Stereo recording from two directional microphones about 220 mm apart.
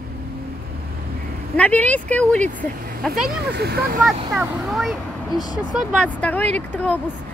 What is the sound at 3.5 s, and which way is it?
Speech, 45° right (ahead or behind).